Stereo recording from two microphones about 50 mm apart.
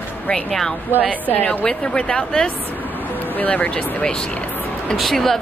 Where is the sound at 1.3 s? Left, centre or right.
Left.